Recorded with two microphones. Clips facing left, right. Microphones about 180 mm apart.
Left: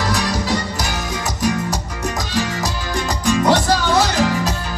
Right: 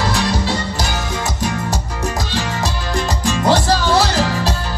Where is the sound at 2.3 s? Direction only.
30° right (ahead or behind).